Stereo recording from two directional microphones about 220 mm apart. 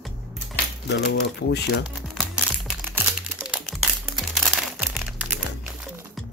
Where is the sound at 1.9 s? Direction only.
Centre (ahead or behind).